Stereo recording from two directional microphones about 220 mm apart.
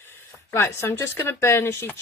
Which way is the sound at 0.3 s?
10° left (ahead or behind).